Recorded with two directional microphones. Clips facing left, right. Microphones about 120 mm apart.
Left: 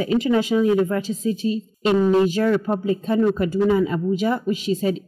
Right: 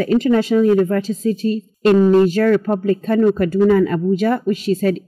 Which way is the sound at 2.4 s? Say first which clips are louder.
Right 4 dB; 55° right (ahead or behind).